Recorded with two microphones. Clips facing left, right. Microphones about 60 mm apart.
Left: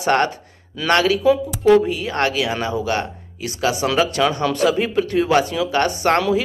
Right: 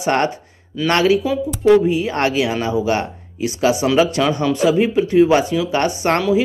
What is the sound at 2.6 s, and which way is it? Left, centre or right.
Speech, centre.